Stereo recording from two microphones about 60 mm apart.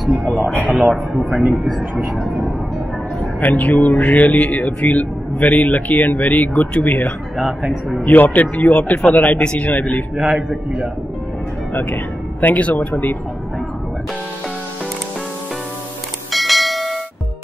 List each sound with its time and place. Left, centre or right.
0.0 s speech: centre
1.4 s speech: centre
3.2 s a man's voice: left
10.1 s a man's voice: centre
11.7 s speech: left
16.3 s church bell: centre